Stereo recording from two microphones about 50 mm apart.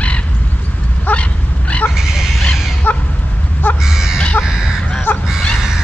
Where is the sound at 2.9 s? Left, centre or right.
Left.